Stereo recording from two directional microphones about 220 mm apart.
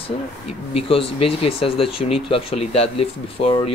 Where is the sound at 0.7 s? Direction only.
25° left (ahead or behind).